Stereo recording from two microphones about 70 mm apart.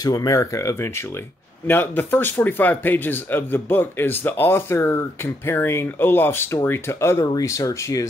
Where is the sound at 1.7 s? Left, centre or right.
Left.